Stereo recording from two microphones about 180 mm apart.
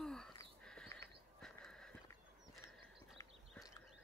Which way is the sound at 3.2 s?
15° left (ahead or behind).